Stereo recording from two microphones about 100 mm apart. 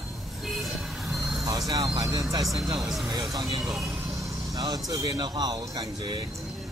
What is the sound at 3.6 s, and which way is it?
Speech, 5° right (ahead or behind).